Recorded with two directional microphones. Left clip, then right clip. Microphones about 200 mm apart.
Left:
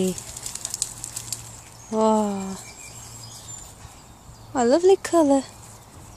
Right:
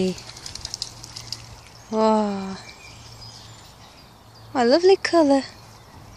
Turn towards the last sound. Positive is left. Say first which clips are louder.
# right 1 dB
turn(degrees=0)  # may be behind; listen again after turning